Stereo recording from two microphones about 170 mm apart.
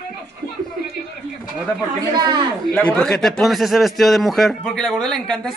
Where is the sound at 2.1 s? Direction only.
25° right (ahead or behind).